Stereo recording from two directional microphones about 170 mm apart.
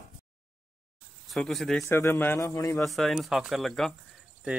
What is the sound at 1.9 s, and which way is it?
Speech, 15° left (ahead or behind).